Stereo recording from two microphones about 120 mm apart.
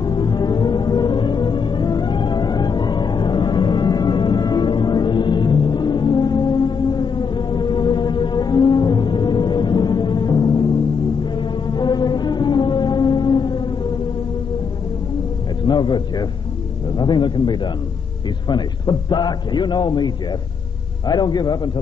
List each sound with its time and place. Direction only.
0.0 s music: 35° left (ahead or behind)
15.6 s a sound: 40° left (ahead or behind)
21.1 s a man's voice: 35° left (ahead or behind)